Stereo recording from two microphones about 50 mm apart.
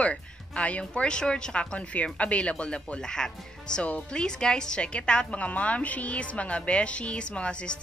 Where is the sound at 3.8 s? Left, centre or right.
Left.